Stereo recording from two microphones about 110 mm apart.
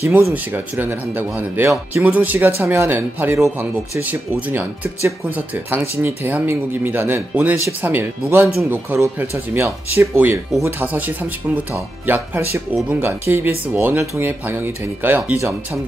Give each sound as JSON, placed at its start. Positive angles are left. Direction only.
{"t": 0.1, "sound": "speech", "side_deg": -15}